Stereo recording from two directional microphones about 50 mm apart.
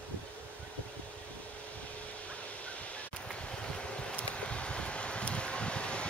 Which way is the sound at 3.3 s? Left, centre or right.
Centre.